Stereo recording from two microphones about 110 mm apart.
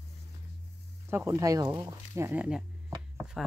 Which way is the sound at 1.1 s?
25° right (ahead or behind).